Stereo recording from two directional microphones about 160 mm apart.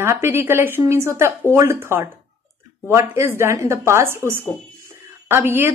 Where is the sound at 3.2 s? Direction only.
15° right (ahead or behind).